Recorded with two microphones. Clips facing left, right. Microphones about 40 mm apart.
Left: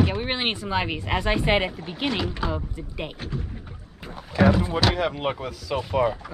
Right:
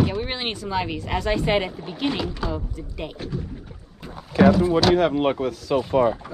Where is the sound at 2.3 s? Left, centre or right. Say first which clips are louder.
Even; left.